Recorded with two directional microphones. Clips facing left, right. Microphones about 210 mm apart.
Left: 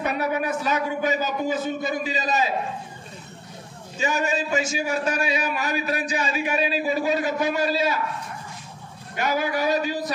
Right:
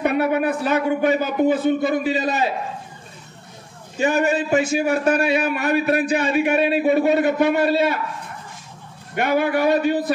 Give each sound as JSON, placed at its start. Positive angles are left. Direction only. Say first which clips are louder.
{"t": 0.0, "sound": "a man's voice", "louder": "right 6 dB", "side_deg": -60}
{"t": 4.0, "sound": "a man's voice", "louder": "right 6 dB", "side_deg": -60}
{"t": 9.1, "sound": "a man's voice", "louder": "right 5 dB", "side_deg": -60}